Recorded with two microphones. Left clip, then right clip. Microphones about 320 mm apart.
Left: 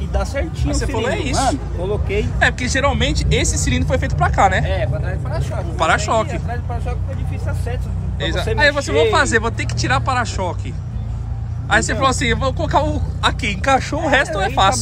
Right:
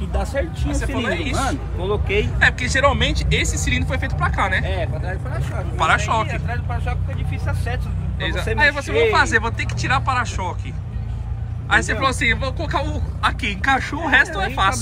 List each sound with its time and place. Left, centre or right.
0.7 s speech: centre
4.6 s speech: left
5.8 s speech: centre
8.2 s speech: centre
11.7 s speech: centre